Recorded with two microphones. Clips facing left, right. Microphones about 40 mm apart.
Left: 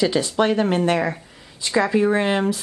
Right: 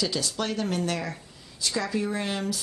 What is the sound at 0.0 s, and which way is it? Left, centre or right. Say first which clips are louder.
Speech: left 10 dB; left.